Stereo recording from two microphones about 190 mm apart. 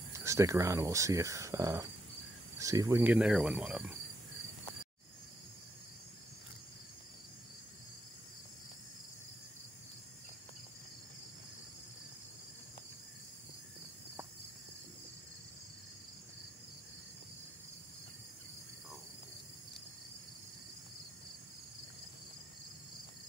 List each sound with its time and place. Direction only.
0.1 s speech: 15° right (ahead or behind)